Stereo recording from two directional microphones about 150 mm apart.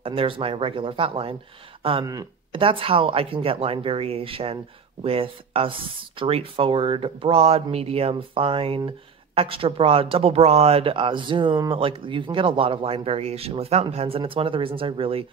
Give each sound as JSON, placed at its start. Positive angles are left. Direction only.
{"t": 0.0, "sound": "speech", "side_deg": -40}
{"t": 2.0, "sound": "speech", "side_deg": -25}
{"t": 2.6, "sound": "speech", "side_deg": -35}